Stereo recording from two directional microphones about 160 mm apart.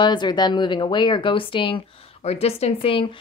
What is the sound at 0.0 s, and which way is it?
A woman's voice, 30° left (ahead or behind).